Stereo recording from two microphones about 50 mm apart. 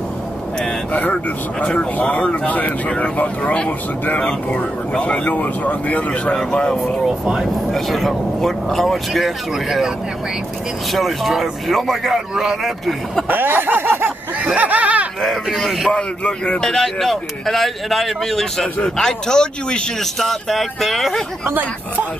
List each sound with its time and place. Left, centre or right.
1.1 s speech: left
4.2 s speech: centre
6.3 s speech: centre
7.1 s speech: centre
7.7 s speech: centre
13.3 s a sound: right
14.4 s speech: right
15.4 s speech: centre
15.9 s speech: left
16.6 s speech: centre
20.0 s speech: centre